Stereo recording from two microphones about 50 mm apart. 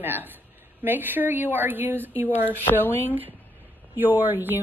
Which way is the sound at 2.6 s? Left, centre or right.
Left.